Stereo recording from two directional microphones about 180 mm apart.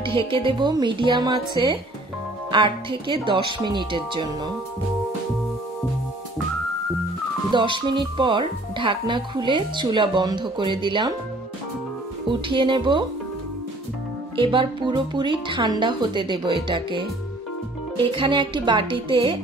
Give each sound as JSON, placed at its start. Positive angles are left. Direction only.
{"t": 0.0, "sound": "speech", "side_deg": -30}
{"t": 7.5, "sound": "speech", "side_deg": -25}
{"t": 12.3, "sound": "speech", "side_deg": -25}
{"t": 14.3, "sound": "speech", "side_deg": -25}